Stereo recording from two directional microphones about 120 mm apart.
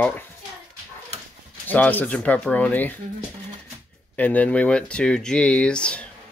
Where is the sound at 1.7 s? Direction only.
15° left (ahead or behind).